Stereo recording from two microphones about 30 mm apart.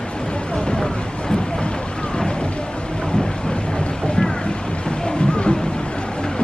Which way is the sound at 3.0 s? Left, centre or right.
Left.